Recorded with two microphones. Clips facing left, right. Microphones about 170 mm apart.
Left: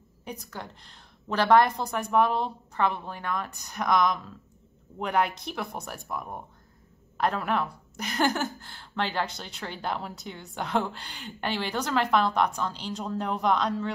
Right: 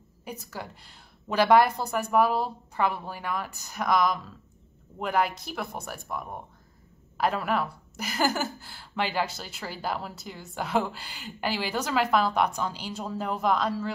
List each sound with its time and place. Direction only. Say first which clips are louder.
0.2 s a woman's voice: right 1 dB; 5° right (ahead or behind)